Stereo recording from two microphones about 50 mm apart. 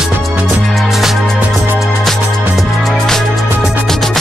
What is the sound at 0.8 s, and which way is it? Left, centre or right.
Music, centre.